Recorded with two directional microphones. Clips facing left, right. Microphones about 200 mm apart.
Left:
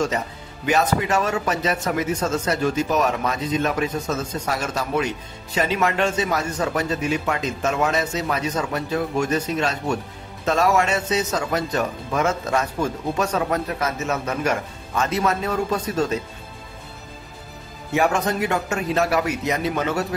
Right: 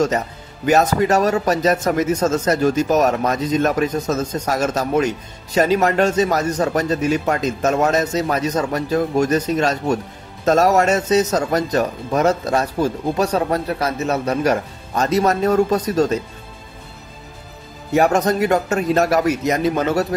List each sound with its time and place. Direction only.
0.7 s speech: 40° right (ahead or behind)
17.9 s speech: 40° right (ahead or behind)